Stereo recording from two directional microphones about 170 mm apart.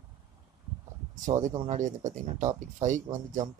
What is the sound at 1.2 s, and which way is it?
Speech, 45° right (ahead or behind).